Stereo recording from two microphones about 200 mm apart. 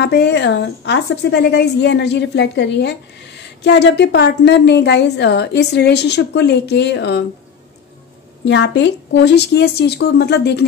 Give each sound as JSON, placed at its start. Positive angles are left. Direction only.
{"t": 0.0, "sound": "a woman's voice", "side_deg": 60}
{"t": 8.5, "sound": "a woman's voice", "side_deg": 60}